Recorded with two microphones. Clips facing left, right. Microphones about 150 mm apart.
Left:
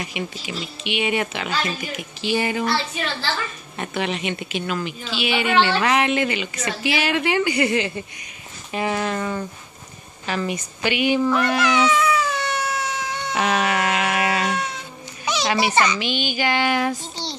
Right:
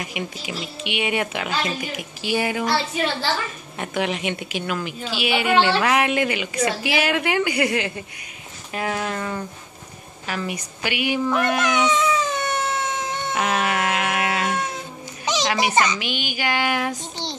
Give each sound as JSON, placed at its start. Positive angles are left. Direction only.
{"t": 0.0, "sound": "a woman's voice", "side_deg": -10}
{"t": 3.7, "sound": "a woman's voice", "side_deg": -10}
{"t": 8.7, "sound": "a sound", "side_deg": 0}
{"t": 10.2, "sound": "cat", "side_deg": -5}
{"t": 13.3, "sound": "a sound", "side_deg": 0}
{"t": 15.5, "sound": "a woman's voice", "side_deg": -20}